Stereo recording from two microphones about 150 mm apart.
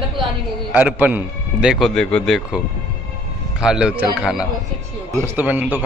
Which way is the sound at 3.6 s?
5° right (ahead or behind).